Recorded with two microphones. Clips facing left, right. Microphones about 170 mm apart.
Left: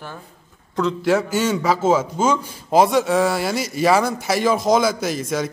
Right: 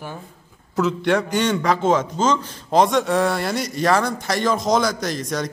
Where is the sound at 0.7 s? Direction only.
Centre (ahead or behind).